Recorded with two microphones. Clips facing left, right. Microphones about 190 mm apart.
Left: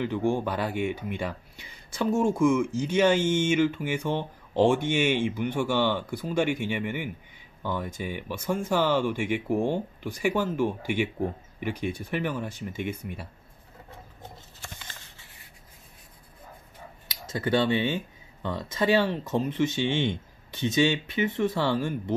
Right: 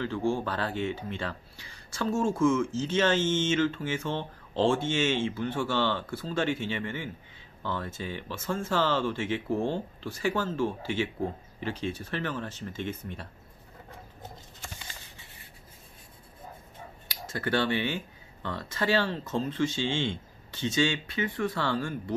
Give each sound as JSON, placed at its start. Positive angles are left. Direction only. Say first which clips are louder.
{"t": 0.0, "sound": "speech", "louder": "left 3 dB", "side_deg": 15}
{"t": 17.1, "sound": "speech", "louder": "left 4 dB", "side_deg": 20}